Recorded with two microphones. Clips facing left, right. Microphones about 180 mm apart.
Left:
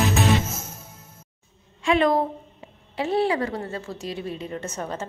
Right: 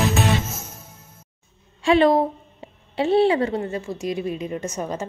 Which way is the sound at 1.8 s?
30° right (ahead or behind).